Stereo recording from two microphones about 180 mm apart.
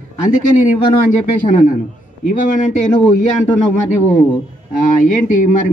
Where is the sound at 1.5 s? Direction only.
45° left (ahead or behind).